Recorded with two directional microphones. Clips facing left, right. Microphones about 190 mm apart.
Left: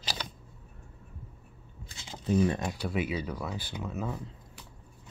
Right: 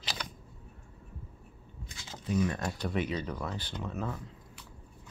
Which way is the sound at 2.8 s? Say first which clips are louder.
Left 1 dB; 5° left (ahead or behind).